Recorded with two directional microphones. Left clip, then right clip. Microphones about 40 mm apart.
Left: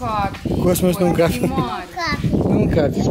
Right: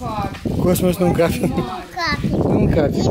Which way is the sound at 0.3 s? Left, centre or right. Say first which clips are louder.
Even; centre.